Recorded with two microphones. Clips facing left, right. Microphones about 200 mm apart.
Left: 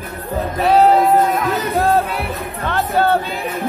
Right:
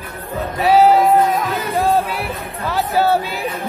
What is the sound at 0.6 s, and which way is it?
Music, centre (ahead or behind).